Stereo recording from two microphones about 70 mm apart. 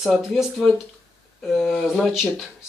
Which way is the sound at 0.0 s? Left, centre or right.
Centre.